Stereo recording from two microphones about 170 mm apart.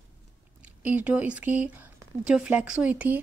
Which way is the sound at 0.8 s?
10° right (ahead or behind).